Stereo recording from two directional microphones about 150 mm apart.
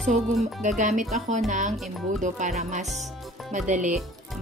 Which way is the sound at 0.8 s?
55° right (ahead or behind).